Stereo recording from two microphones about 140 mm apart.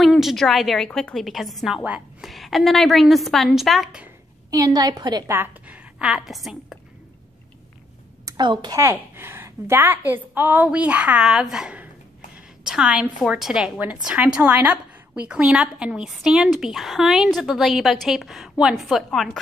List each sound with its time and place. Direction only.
0.0 s a woman's voice: centre (ahead or behind)
4.5 s a woman's voice: 25° right (ahead or behind)
5.3 s a woman's voice: 15° right (ahead or behind)
8.3 s a woman's voice: 30° right (ahead or behind)
8.8 s a woman's voice: 15° right (ahead or behind); by 19.4 s centre (ahead or behind)